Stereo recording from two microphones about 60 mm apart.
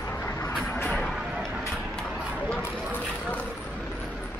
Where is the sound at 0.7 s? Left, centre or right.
Centre.